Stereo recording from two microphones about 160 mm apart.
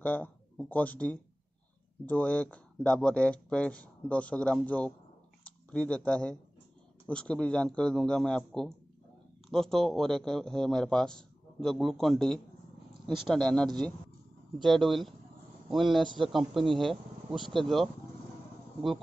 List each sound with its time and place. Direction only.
0.0 s a man's voice: 10° left (ahead or behind)